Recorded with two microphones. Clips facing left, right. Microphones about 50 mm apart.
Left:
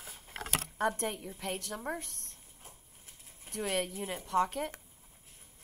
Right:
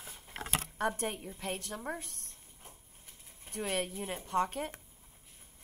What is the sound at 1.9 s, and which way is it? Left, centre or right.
Speech, left.